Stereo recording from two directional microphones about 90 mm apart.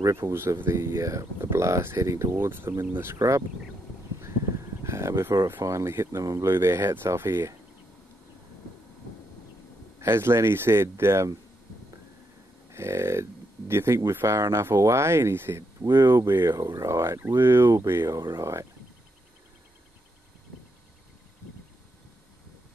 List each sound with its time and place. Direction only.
0.3 s speech: 25° right (ahead or behind)
3.2 s speech: 35° right (ahead or behind)
4.8 s speech: 30° right (ahead or behind)
9.9 s speech: 30° right (ahead or behind)
12.7 s speech: 30° right (ahead or behind)
18.1 s speech: 40° right (ahead or behind)